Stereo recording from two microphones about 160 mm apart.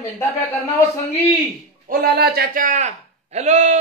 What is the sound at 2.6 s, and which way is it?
Speech, 45° right (ahead or behind).